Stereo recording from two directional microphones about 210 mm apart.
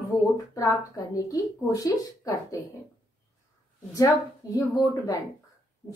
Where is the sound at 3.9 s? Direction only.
15° left (ahead or behind).